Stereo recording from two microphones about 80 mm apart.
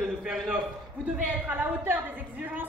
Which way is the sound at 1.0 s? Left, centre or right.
Centre.